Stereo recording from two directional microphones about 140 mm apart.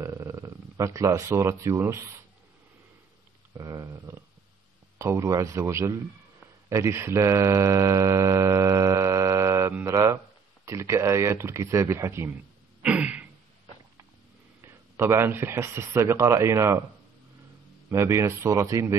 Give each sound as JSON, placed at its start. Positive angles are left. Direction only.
{"t": 0.0, "sound": "speech", "side_deg": -20}
{"t": 3.5, "sound": "a sound", "side_deg": -25}
{"t": 4.9, "sound": "speech", "side_deg": -20}
{"t": 12.8, "sound": "a sound", "side_deg": -10}
{"t": 14.6, "sound": "speech", "side_deg": -20}
{"t": 17.8, "sound": "speech", "side_deg": -20}